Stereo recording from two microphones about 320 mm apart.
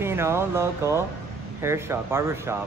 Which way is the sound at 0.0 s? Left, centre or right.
Centre.